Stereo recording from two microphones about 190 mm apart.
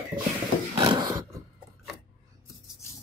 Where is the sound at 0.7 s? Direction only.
20° right (ahead or behind).